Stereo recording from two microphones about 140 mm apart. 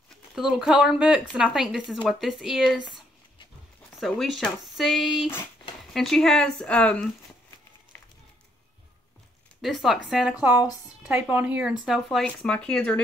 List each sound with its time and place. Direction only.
0.4 s speech: 5° right (ahead or behind)
2.8 s a sound: 35° left (ahead or behind)
4.0 s speech: centre (ahead or behind)
9.6 s speech: centre (ahead or behind)